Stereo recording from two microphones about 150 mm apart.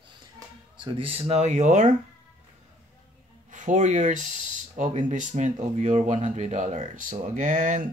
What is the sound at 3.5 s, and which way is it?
Speech, 55° right (ahead or behind).